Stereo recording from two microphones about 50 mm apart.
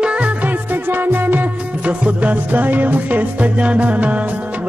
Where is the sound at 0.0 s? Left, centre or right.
Right.